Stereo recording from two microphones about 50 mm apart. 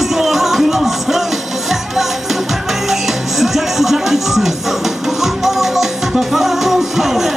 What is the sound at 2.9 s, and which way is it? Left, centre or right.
Music, centre.